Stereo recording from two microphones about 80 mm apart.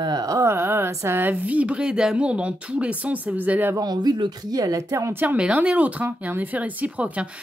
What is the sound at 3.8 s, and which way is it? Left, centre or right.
Speech, right.